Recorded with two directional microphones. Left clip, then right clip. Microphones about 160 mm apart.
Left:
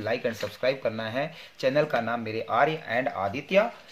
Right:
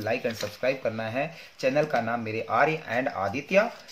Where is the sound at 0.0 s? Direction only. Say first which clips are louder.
Even; 15° left (ahead or behind).